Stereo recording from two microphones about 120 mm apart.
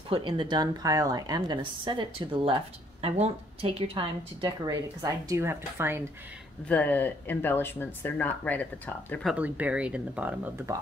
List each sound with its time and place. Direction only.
0.1 s a woman's voice: 45° right (ahead or behind)
5.3 s speech: 20° right (ahead or behind)
6.7 s speech: 15° left (ahead or behind)
9.2 s speech: 10° right (ahead or behind)